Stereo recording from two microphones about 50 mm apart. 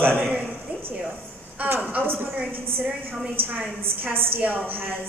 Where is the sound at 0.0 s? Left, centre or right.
Right.